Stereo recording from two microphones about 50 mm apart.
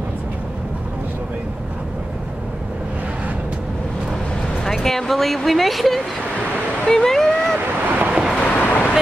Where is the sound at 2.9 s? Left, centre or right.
Right.